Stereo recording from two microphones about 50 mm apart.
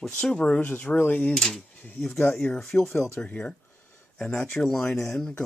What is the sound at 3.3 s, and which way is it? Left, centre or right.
Speech, left.